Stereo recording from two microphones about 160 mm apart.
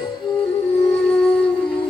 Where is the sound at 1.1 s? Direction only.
10° left (ahead or behind).